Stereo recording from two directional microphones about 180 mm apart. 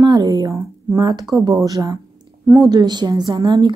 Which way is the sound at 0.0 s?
20° right (ahead or behind).